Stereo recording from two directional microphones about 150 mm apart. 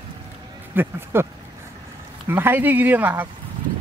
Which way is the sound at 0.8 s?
15° right (ahead or behind).